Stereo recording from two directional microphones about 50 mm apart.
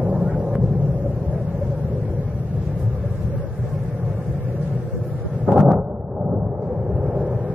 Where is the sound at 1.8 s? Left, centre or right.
Right.